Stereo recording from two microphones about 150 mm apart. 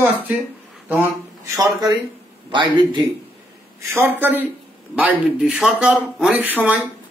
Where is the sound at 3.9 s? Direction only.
15° right (ahead or behind).